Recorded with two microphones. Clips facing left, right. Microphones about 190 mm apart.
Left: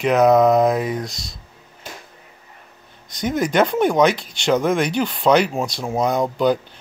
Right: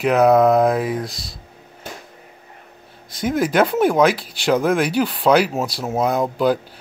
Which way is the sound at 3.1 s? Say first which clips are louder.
Right 1 dB; 5° right (ahead or behind).